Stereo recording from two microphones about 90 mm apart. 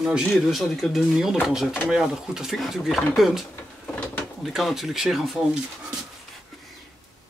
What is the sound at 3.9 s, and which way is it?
Drawer open or close, 20° left (ahead or behind).